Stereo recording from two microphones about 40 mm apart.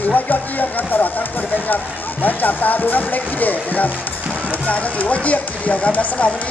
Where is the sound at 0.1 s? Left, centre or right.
Left.